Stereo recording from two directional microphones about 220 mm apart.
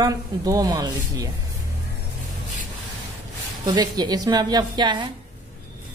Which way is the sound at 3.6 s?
20° right (ahead or behind).